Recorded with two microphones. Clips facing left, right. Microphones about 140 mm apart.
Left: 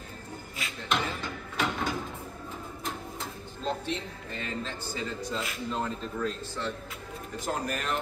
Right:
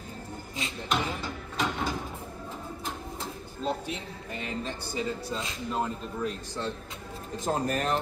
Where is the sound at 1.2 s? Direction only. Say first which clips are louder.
Even; 5° right (ahead or behind).